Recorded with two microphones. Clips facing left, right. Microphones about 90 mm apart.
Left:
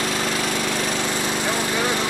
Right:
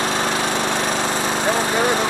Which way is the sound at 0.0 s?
25° right (ahead or behind).